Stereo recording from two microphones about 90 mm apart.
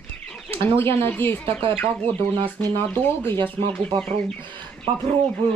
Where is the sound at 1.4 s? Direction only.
90° right.